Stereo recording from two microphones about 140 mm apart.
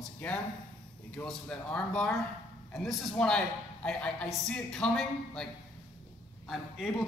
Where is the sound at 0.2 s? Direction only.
10° left (ahead or behind).